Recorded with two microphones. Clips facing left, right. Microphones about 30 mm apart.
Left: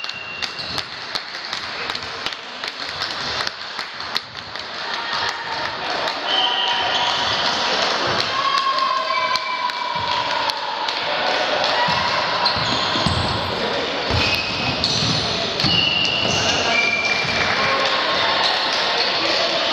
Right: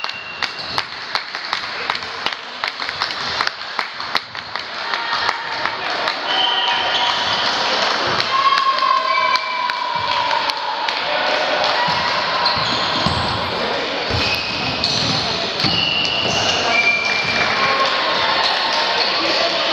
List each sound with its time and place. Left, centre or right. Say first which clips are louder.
0.4 s applause: right 5 dB; right
5.5 s crowd: right 2 dB; centre
6.2 s basketball bounce: right 1 dB; centre
10.0 s music: right 3 dB; centre